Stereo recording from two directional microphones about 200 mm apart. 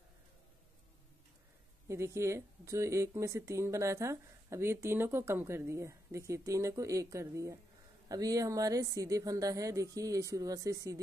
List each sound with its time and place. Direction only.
1.9 s speech: 15° right (ahead or behind)